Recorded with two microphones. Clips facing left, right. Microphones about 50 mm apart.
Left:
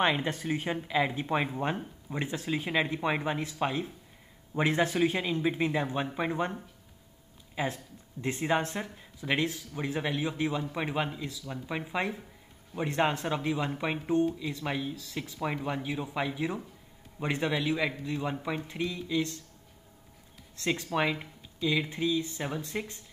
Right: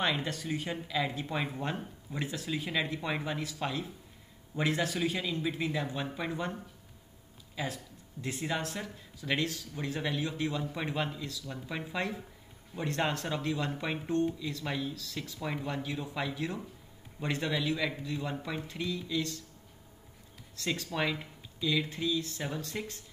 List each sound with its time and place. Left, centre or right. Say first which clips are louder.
0.0 s speech: left 4 dB; left
7.5 s speech: left 4 dB; left
20.5 s speech: left 4 dB; left